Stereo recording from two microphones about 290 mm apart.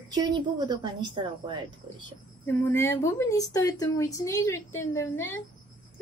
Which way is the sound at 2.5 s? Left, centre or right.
Centre.